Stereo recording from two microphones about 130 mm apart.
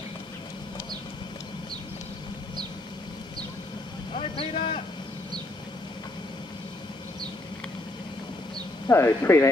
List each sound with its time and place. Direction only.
4.1 s vehicle: 45° left (ahead or behind)
8.8 s speech: 20° left (ahead or behind)